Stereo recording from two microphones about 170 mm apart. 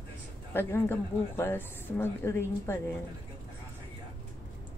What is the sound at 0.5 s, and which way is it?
Speech, 10° left (ahead or behind).